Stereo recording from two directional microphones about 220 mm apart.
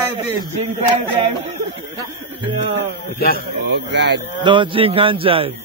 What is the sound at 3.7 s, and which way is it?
Speech, 50° right (ahead or behind).